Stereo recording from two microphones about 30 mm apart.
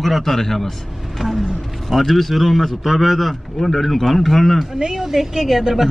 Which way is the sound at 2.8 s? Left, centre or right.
Centre.